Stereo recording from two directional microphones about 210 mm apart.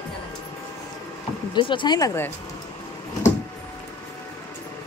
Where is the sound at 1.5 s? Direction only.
20° left (ahead or behind).